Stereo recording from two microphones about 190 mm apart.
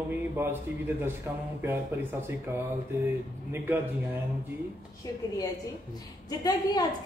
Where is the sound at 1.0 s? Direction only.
10° right (ahead or behind).